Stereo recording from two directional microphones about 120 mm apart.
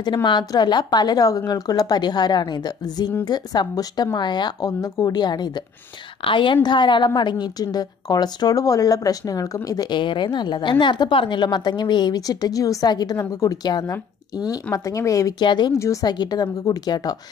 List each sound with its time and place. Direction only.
0.0 s a woman's voice: 40° left (ahead or behind)
15.4 s a woman's voice: 40° left (ahead or behind)